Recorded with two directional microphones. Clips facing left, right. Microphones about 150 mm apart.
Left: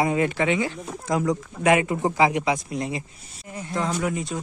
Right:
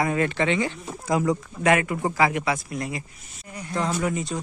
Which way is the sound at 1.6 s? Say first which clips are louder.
Left 2 dB; 20° left (ahead or behind).